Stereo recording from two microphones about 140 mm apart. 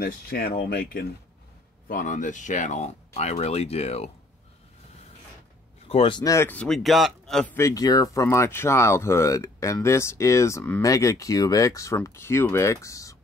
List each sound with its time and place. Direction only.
0.0 s speech: 90° left
1.9 s speech: 80° left; by 4.1 s 50° left (ahead or behind)
5.9 s speech: 40° left (ahead or behind)
6.2 s speech: 20° left (ahead or behind)
7.5 s speech: 25° left (ahead or behind)